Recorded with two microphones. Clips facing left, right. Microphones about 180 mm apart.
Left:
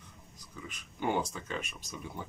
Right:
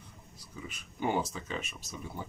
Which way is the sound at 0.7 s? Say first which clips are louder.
Even; 5° right (ahead or behind).